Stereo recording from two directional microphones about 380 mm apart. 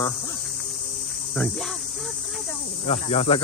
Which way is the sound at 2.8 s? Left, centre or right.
Centre.